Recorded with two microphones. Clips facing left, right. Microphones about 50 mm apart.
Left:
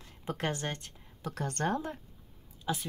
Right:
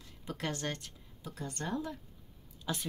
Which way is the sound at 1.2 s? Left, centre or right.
Left.